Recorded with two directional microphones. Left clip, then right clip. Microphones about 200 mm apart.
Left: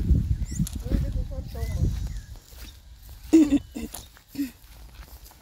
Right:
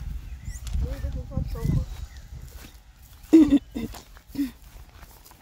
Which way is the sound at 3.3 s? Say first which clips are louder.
Right 2 dB; 10° right (ahead or behind).